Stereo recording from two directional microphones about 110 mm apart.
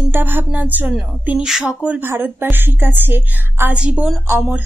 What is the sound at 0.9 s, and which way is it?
Speech, 5° right (ahead or behind).